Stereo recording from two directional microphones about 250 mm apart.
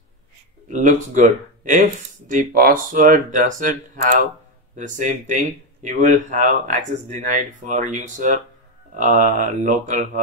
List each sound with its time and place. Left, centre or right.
0.7 s speech: right